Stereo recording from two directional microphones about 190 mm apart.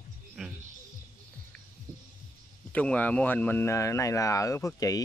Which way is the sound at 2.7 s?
5° left (ahead or behind).